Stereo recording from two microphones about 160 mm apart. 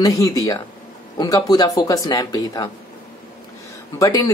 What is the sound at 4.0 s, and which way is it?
Speech, 20° left (ahead or behind).